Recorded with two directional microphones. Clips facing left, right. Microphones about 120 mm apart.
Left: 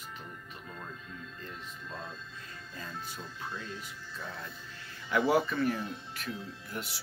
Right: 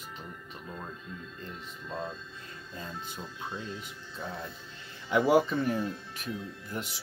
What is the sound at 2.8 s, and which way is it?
Speech, 30° right (ahead or behind).